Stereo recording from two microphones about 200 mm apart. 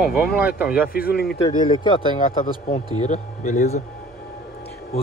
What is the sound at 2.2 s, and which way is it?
A man's voice, 45° left (ahead or behind).